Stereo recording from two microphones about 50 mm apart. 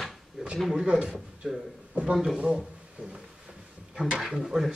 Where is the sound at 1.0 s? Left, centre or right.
Centre.